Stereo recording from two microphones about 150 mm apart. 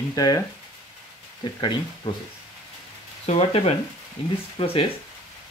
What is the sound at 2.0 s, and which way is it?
Speech, 30° left (ahead or behind).